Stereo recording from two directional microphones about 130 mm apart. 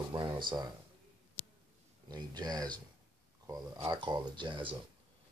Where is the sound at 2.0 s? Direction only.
35° right (ahead or behind).